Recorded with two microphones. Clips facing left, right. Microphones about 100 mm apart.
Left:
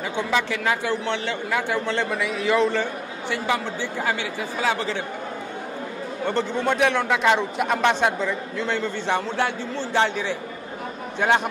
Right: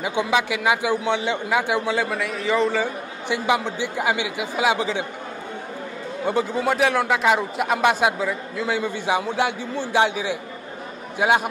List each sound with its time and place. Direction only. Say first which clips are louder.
0.0 s a man's voice: right 2 dB; 15° right (ahead or behind)
3.3 s a man's voice: right 3 dB; 15° right (ahead or behind)
6.2 s a man's voice: right 1 dB; 5° right (ahead or behind)